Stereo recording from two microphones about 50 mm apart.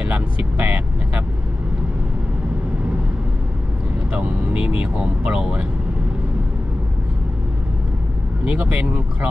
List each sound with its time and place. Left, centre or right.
0.0 s vehicle: right
4.1 s music: right
5.4 s speech: centre
8.5 s speech: right